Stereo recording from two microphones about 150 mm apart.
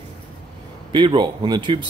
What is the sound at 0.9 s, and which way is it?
Speech, 30° right (ahead or behind).